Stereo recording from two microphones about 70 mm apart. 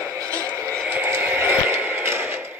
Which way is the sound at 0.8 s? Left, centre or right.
Right.